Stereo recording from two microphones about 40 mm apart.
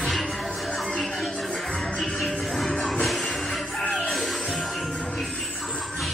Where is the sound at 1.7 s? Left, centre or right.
Centre.